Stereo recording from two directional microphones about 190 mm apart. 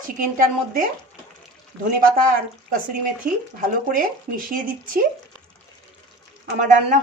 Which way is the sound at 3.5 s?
45° right (ahead or behind).